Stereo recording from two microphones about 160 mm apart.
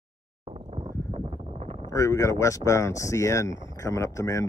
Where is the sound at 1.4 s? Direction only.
40° right (ahead or behind).